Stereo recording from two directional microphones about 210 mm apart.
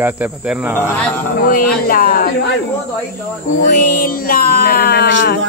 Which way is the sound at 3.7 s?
45° left (ahead or behind).